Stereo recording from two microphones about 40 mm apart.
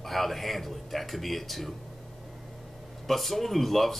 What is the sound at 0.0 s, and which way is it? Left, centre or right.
Speech, centre.